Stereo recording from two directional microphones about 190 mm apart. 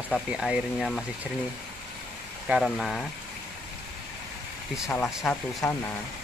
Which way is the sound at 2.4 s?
Centre (ahead or behind).